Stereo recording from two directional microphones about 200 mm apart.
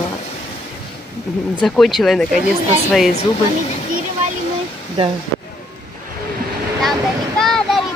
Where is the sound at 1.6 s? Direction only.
Centre (ahead or behind).